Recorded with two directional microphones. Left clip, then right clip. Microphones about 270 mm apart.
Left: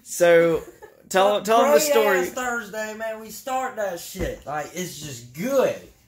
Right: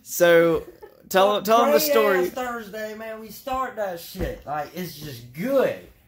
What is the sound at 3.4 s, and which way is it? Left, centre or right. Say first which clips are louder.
A man's voice: even; centre.